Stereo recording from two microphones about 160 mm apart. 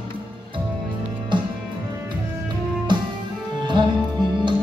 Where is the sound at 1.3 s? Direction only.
30° right (ahead or behind).